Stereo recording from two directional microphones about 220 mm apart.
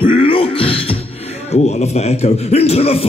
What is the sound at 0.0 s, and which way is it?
Music, 25° left (ahead or behind).